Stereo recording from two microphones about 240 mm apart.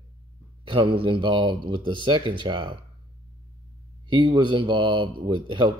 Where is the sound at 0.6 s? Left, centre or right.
Right.